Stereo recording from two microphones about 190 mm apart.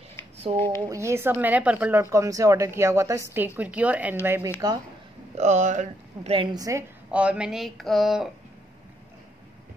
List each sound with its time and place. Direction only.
0.5 s a woman's voice: 35° right (ahead or behind)
0.8 s speech: 15° right (ahead or behind)
5.4 s a woman's voice: 40° right (ahead or behind); by 6.8 s 20° right (ahead or behind)
7.1 s speech: 5° right (ahead or behind)